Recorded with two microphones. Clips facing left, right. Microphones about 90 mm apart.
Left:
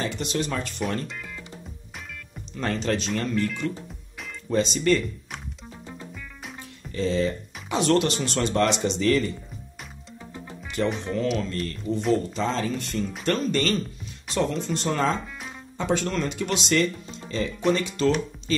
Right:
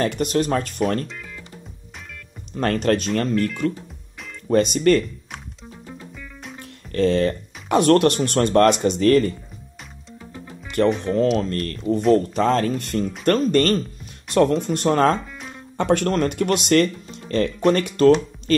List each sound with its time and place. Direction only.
0.0 s speech: 55° right (ahead or behind)
2.5 s speech: 55° right (ahead or behind)
4.5 s speech: 55° right (ahead or behind)
6.9 s speech: 60° right (ahead or behind)
11.1 s speech: 45° right (ahead or behind)